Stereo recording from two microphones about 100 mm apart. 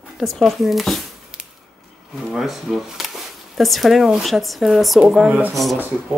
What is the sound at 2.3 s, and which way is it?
Speech, centre (ahead or behind).